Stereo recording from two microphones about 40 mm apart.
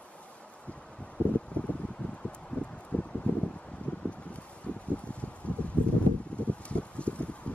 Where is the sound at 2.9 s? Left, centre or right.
Left.